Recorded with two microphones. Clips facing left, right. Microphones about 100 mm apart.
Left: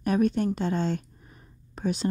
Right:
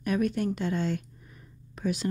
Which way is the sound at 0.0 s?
30° left (ahead or behind).